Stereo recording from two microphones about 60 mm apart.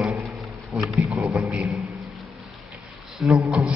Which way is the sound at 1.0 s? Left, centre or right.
Centre.